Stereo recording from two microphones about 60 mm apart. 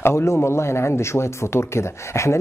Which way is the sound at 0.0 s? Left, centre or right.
Left.